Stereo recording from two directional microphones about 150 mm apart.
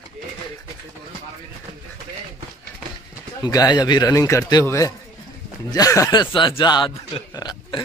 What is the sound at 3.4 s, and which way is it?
A man's voice, 25° left (ahead or behind).